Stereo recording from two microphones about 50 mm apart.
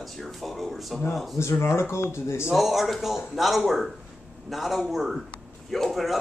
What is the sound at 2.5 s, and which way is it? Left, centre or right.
A man's voice, centre.